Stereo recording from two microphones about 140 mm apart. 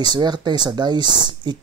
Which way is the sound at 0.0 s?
30° right (ahead or behind).